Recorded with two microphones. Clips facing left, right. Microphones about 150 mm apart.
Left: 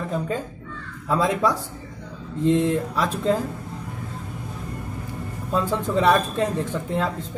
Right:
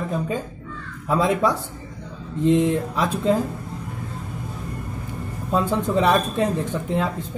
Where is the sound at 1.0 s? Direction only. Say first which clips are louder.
Right 1 dB; 20° right (ahead or behind).